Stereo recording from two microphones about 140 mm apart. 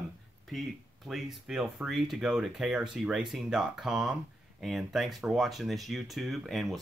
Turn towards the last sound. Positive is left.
turn(degrees=0)  # may be behind; listen again after turning